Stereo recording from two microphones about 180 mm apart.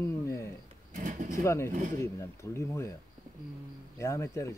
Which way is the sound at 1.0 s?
45° right (ahead or behind).